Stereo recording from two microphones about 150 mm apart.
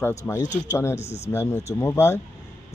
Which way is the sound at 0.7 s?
20° left (ahead or behind).